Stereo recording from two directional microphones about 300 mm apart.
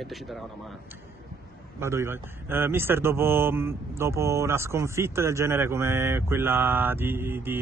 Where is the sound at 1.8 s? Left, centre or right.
Centre.